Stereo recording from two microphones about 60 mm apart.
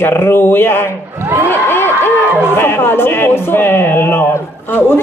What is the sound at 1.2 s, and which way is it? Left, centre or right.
Speech, right.